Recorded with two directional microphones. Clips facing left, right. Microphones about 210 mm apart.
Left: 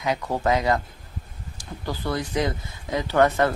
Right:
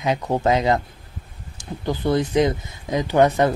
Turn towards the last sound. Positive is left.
turn(degrees=-15)  # may be behind; listen again after turning